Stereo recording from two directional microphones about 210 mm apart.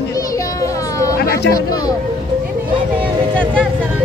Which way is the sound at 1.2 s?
50° left (ahead or behind).